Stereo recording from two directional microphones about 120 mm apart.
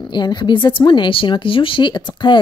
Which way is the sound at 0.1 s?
40° left (ahead or behind).